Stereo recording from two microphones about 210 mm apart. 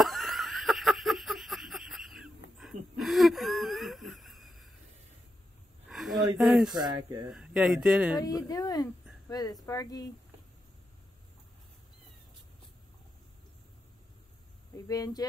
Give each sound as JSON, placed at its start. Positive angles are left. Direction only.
{"t": 0.0, "sound": "a sound", "side_deg": 0}
{"t": 2.5, "sound": "wheeze", "side_deg": 0}
{"t": 5.9, "sound": "a sound", "side_deg": 0}
{"t": 6.3, "sound": "speech", "side_deg": -5}
{"t": 6.7, "sound": "speech", "side_deg": -20}
{"t": 7.2, "sound": "speech", "side_deg": -5}
{"t": 8.2, "sound": "speech", "side_deg": 15}
{"t": 14.9, "sound": "speech", "side_deg": 15}